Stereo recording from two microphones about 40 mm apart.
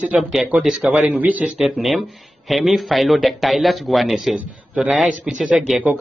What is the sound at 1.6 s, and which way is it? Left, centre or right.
Speech, centre.